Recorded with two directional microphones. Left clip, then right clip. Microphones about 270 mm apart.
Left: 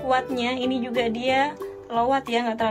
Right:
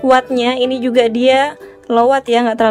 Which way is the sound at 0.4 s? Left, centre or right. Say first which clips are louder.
Right 11 dB; centre.